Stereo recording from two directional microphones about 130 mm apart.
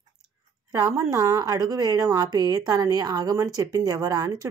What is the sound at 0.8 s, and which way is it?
A woman's voice, 20° right (ahead or behind).